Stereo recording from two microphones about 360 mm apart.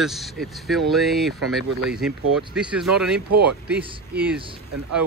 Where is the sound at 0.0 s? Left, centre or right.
Centre.